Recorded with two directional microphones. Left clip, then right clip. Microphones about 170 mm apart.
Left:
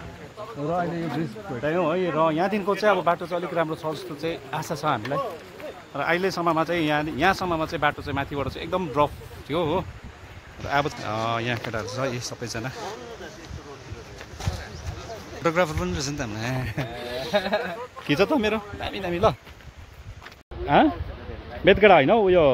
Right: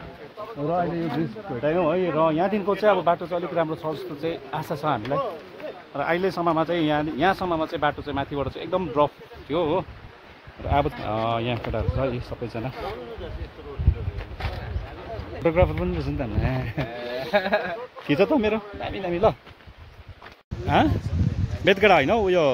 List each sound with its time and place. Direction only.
1.5 s speech: 30° left (ahead or behind); by 12.7 s 5° left (ahead or behind)
15.4 s speech: centre (ahead or behind)
17.3 s speech: 15° left (ahead or behind)
20.6 s speech: centre (ahead or behind)